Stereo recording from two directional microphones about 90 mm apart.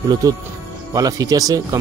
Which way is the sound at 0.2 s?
35° right (ahead or behind).